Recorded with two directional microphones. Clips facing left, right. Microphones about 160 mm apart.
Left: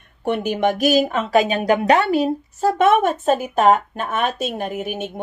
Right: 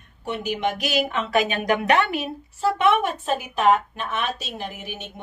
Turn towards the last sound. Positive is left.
turn(degrees=50)  # may be behind; listen again after turning